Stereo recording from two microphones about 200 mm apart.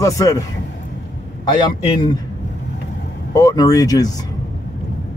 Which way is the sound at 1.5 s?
20° left (ahead or behind).